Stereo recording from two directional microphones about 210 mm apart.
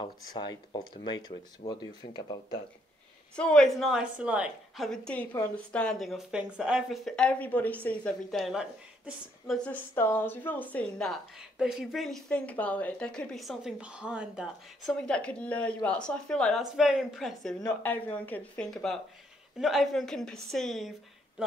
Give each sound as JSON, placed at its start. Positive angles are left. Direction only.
{"t": 0.0, "sound": "speech", "side_deg": 20}
{"t": 3.3, "sound": "a woman's voice", "side_deg": 5}